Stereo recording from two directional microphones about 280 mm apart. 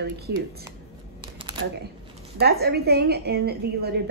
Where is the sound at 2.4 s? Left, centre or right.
Right.